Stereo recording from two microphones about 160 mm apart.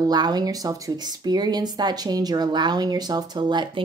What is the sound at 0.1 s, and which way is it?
Speech, 25° right (ahead or behind).